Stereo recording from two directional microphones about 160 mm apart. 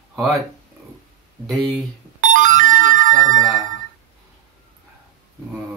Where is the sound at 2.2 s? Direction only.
55° right (ahead or behind).